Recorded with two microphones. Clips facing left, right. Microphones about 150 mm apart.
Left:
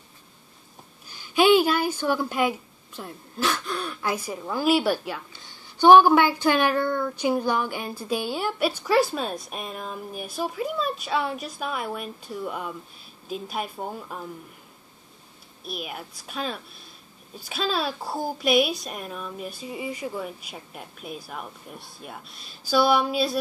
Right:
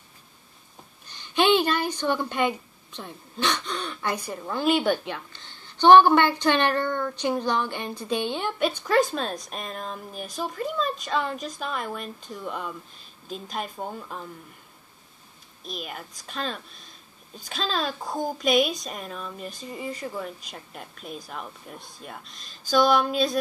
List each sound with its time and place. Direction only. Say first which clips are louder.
1.0 s a woman's voice: left 3 dB; 5° left (ahead or behind)
15.6 s a woman's voice: left 2 dB; 5° left (ahead or behind)